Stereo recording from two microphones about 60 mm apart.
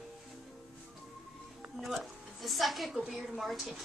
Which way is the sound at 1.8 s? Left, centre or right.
Centre.